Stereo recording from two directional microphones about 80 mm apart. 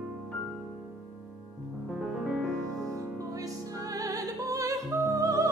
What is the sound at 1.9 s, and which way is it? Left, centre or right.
Music, centre.